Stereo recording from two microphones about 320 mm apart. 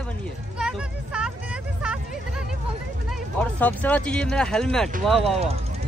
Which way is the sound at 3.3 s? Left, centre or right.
Centre.